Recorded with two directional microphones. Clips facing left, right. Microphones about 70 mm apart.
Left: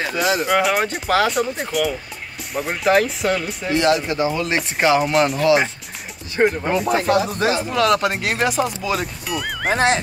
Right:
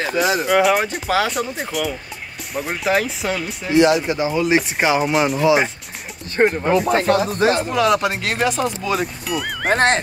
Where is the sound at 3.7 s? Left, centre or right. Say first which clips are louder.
Right 3 dB; centre.